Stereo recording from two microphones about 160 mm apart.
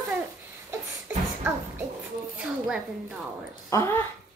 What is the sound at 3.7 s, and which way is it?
Speech, 15° left (ahead or behind).